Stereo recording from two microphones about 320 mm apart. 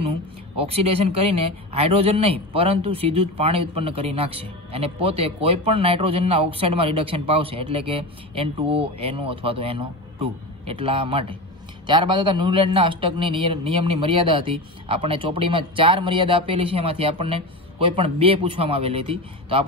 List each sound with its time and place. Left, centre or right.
0.6 s speech: centre